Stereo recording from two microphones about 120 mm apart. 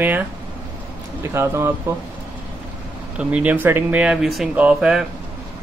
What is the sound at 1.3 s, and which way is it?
Speech, 20° right (ahead or behind).